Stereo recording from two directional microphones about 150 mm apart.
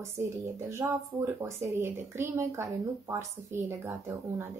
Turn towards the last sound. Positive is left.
turn(degrees=-20)  # may be behind; listen again after turning